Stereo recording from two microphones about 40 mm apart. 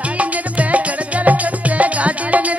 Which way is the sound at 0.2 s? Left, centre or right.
Right.